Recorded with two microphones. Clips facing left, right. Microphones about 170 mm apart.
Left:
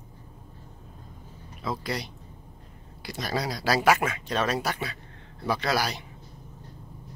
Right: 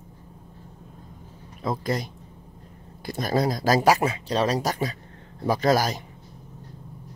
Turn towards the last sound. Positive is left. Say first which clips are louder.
# right 6 dB
turn(degrees=-45)  # may be behind; listen again after turning